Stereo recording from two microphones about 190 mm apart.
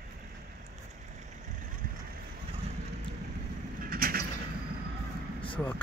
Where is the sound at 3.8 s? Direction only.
50° right (ahead or behind).